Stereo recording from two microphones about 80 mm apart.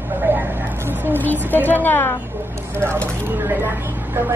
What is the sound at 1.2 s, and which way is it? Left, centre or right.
Speech, left.